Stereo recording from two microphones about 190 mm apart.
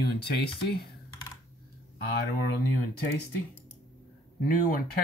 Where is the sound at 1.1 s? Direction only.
20° left (ahead or behind).